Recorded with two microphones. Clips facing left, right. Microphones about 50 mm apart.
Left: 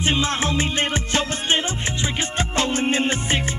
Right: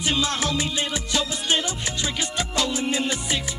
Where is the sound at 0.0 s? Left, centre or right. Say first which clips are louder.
Left 3 dB; left.